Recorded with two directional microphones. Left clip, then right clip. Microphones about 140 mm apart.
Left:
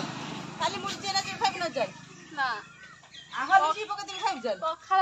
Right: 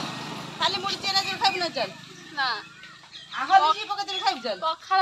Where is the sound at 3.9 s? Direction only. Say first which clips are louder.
Right 5 dB; 35° left (ahead or behind).